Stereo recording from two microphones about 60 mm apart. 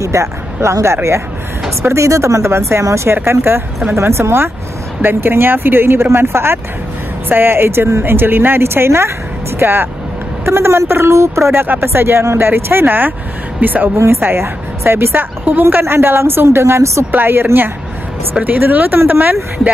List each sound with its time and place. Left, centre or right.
0.0 s speech: right
11.6 s speech: right
13.9 s speech: right
17.1 s speech: right